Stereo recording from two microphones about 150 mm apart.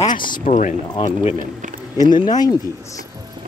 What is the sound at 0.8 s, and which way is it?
Speech, 35° left (ahead or behind).